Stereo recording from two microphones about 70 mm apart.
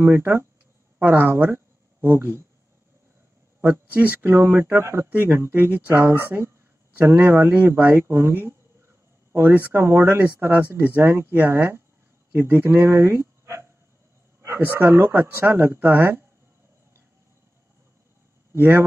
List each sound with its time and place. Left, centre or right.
0.0 s speech: right
3.9 s speech: right
18.5 s speech: right